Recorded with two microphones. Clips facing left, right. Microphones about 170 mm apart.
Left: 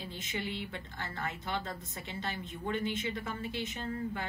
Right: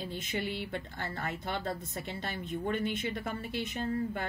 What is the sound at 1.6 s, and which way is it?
A woman's voice, 40° right (ahead or behind).